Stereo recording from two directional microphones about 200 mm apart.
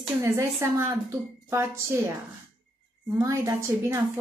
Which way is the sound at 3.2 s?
15° right (ahead or behind).